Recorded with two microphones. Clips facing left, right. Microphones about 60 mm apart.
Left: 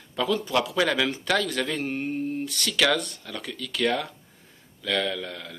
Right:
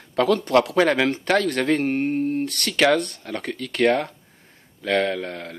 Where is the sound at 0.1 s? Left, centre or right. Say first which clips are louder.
Right 7 dB; right.